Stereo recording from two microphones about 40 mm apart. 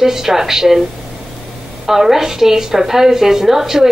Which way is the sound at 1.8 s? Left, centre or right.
Centre.